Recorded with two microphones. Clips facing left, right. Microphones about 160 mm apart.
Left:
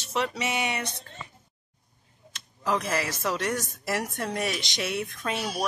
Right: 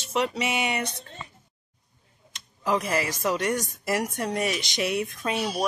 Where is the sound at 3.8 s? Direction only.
15° right (ahead or behind).